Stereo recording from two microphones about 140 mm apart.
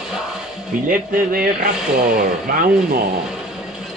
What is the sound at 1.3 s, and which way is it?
Speech, 90° right.